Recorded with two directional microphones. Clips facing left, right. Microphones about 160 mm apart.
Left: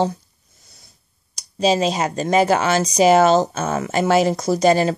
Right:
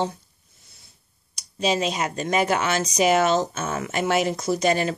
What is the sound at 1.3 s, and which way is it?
Speech, 35° left (ahead or behind).